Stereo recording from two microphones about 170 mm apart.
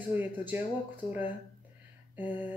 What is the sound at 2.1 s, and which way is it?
Speech, 10° right (ahead or behind).